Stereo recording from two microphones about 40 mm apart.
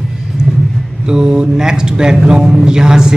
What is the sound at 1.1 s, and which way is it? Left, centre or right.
Speech, centre.